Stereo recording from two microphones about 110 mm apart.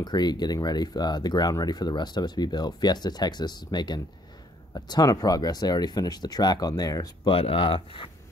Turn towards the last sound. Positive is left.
turn(degrees=50)  # may be behind; listen again after turning